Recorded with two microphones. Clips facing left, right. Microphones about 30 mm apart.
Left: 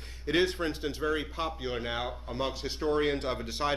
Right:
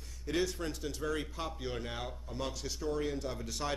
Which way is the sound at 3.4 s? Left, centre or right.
Left.